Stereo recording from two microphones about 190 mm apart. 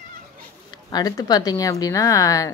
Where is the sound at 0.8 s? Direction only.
20° left (ahead or behind).